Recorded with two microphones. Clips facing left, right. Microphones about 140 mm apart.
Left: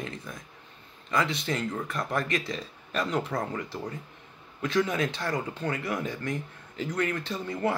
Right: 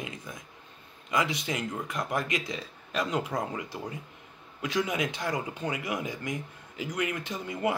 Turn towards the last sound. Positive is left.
turn(degrees=-15)  # may be behind; listen again after turning